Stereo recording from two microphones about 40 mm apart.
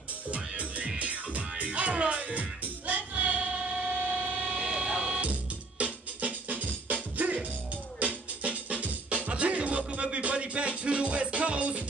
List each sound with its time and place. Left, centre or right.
0.3 s music: right
5.8 s music: right